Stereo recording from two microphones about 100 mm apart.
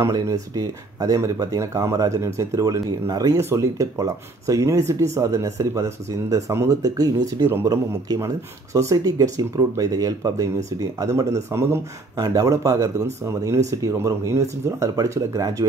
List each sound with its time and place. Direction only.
0.0 s speech: 35° right (ahead or behind)
12.2 s speech: 35° right (ahead or behind)